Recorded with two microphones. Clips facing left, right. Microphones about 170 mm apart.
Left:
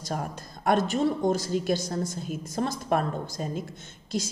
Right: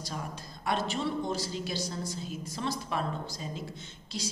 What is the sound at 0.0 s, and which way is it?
Speech, 50° left (ahead or behind).